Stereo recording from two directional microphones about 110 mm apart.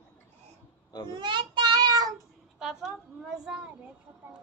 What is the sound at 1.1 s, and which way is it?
Child singing, 45° right (ahead or behind).